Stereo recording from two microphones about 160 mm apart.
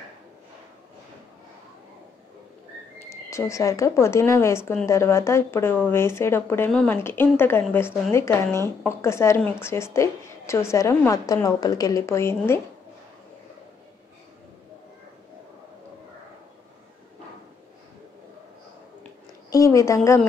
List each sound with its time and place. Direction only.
3.1 s speech: 20° left (ahead or behind)
19.5 s speech: 20° left (ahead or behind)